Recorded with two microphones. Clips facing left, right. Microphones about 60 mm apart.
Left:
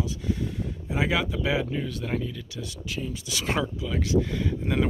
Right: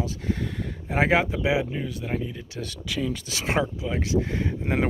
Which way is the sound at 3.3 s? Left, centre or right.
Right.